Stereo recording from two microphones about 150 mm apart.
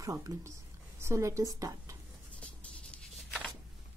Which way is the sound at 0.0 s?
25° right (ahead or behind).